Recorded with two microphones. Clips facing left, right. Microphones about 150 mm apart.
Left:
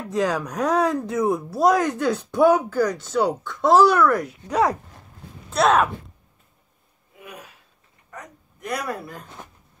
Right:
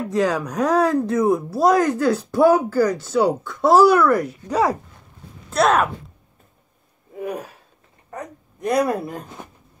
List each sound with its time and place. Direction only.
0.1 s speech: centre (ahead or behind)
7.2 s a sound: 40° right (ahead or behind)
8.1 s speech: 30° right (ahead or behind)